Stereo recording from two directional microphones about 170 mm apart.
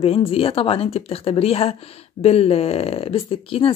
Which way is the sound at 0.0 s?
35° left (ahead or behind).